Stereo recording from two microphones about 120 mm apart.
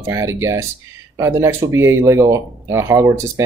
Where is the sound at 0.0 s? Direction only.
25° right (ahead or behind).